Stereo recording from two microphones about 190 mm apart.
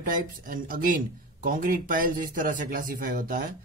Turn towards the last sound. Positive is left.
turn(degrees=-45)  # may be behind; listen again after turning